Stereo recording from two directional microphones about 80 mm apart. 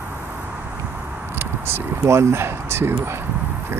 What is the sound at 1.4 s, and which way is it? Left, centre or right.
Speech, right.